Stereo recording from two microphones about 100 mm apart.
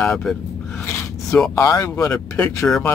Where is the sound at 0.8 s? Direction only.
25° left (ahead or behind).